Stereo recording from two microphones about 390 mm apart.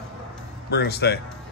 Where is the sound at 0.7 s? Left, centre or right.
Left.